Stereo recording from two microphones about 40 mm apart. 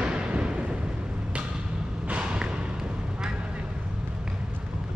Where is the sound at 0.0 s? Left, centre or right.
Right.